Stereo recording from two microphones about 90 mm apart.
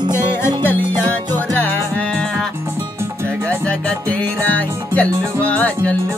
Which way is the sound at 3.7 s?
15° left (ahead or behind).